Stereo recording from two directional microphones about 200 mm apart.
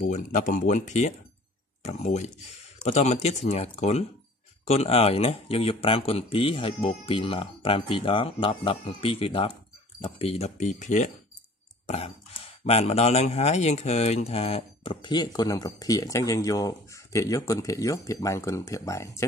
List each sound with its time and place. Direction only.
0.0 s speech: 40° left (ahead or behind); by 19.2 s 15° left (ahead or behind)